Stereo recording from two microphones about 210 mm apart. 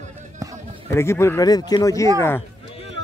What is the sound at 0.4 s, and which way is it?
Music, 15° right (ahead or behind).